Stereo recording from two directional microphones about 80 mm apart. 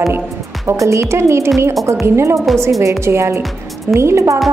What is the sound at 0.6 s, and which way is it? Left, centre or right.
A woman's voice, right.